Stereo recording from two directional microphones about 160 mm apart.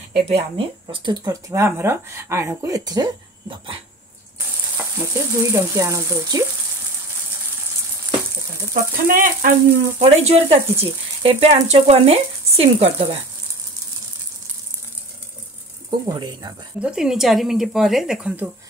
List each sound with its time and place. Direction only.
0.1 s speech: 40° right (ahead or behind)
4.7 s speech: 15° right (ahead or behind)
9.0 s speech: 60° right (ahead or behind)
9.9 s speech: 40° right (ahead or behind)
16.1 s speech: 25° right (ahead or behind)
16.8 s speech: 5° right (ahead or behind)